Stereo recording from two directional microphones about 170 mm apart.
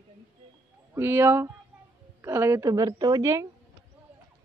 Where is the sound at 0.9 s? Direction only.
15° right (ahead or behind).